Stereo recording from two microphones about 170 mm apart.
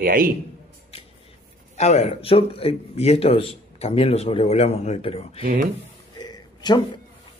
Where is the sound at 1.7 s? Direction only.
40° left (ahead or behind).